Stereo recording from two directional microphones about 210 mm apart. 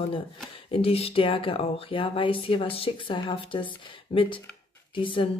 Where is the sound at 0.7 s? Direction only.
25° left (ahead or behind).